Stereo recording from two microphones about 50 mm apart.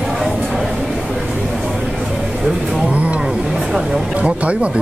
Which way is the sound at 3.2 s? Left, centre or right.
Centre.